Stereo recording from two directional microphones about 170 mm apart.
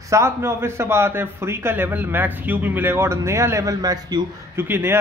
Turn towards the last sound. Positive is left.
turn(degrees=-15)  # may be behind; listen again after turning